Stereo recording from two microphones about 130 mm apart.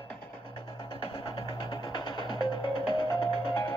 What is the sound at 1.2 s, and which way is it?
Music, 35° left (ahead or behind).